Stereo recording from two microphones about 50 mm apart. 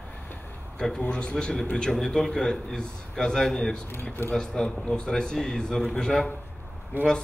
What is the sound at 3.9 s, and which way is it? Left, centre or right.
Speech, left.